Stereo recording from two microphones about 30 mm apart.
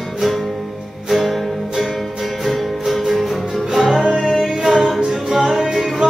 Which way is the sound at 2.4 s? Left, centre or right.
Centre.